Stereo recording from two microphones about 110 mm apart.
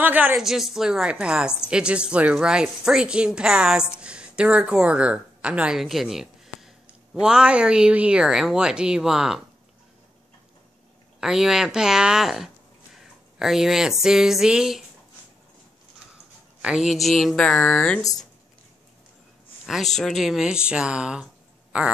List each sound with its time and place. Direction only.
0.0 s a woman's voice: 15° right (ahead or behind)
0.4 s a woman's voice: 5° right (ahead or behind)
11.1 s speech: 5° right (ahead or behind)
16.6 s speech: 5° right (ahead or behind)
19.6 s a man's voice: 5° right (ahead or behind)